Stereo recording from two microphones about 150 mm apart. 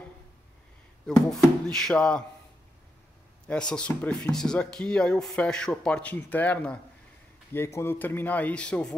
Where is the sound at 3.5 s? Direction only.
5° left (ahead or behind).